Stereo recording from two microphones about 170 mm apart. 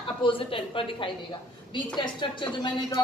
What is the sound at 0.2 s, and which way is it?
A woman's voice, 30° left (ahead or behind).